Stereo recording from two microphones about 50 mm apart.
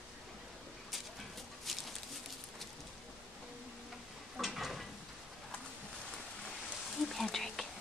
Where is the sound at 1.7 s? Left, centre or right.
Centre.